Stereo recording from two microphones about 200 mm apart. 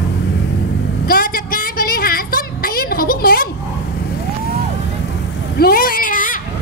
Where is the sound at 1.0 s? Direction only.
45° left (ahead or behind).